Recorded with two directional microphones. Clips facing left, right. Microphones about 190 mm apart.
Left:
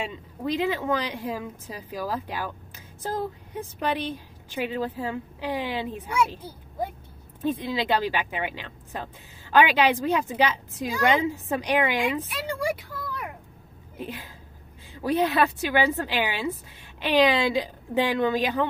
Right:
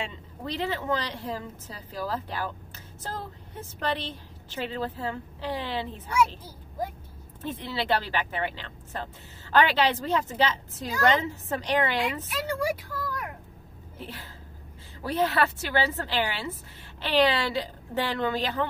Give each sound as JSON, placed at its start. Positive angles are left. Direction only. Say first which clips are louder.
{"t": 0.0, "sound": "speech", "louder": "left 5 dB", "side_deg": 10}
{"t": 13.9, "sound": "speech", "louder": "left 5 dB", "side_deg": 15}